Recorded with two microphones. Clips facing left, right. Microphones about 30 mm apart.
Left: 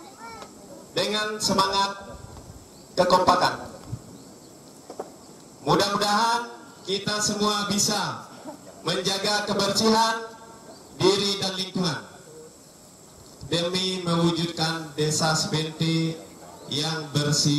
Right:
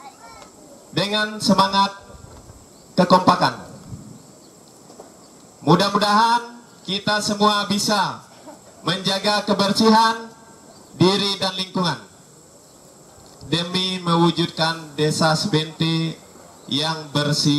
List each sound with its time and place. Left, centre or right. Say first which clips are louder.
0.2 s a sound: left 2 dB; centre
0.9 s mantra: right 4 dB; right
2.9 s speech: right 4 dB; right
5.7 s mantra: right 5 dB; right
6.9 s a man's voice: right 5 dB; right
8.3 s a sound: left 2 dB; centre
8.8 s a man's voice: right 4 dB; right
13.5 s mantra: right 3 dB; right
15.0 s a man's voice: right 5 dB; right
17.1 s mantra: right 4 dB; right